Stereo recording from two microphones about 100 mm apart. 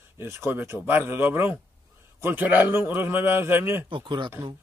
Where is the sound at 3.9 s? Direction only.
55° right (ahead or behind).